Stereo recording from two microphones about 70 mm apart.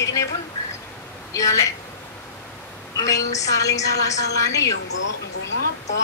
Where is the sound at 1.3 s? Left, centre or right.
Left.